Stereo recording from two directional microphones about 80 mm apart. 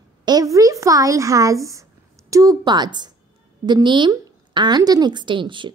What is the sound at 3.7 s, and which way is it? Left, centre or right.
A woman's voice, right.